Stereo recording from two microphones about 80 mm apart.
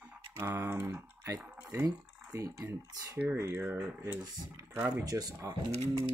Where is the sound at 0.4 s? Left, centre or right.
Right.